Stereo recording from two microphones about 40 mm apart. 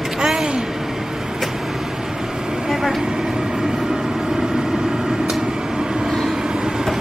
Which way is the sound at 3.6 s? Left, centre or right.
Centre.